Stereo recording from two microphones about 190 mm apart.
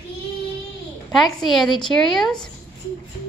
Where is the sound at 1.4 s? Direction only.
Centre (ahead or behind).